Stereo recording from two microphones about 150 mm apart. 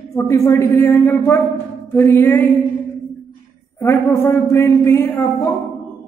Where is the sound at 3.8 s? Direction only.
20° left (ahead or behind).